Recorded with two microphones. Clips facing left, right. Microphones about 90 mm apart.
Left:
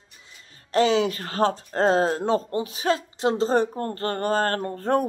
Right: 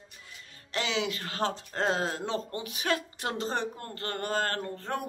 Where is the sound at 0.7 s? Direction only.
40° left (ahead or behind).